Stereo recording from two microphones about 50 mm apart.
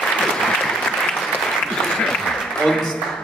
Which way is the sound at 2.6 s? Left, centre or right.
Centre.